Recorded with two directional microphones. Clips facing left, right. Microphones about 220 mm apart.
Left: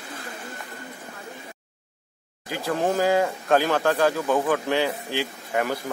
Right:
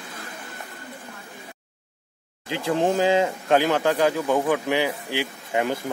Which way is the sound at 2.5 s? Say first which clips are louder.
Right 2 dB; 20° right (ahead or behind).